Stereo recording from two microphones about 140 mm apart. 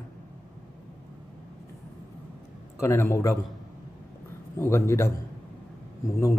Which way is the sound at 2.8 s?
20° left (ahead or behind).